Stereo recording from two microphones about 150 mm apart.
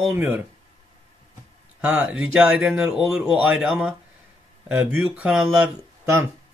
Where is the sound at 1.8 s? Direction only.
5° right (ahead or behind).